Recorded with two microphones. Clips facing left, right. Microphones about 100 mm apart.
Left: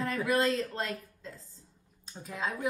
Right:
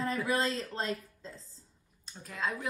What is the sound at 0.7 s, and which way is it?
Speech, 30° right (ahead or behind).